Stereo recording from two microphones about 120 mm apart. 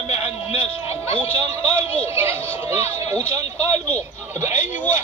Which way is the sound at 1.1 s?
20° right (ahead or behind).